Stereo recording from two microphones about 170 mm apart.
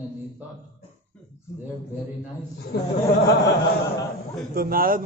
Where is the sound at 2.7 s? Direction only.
65° left (ahead or behind).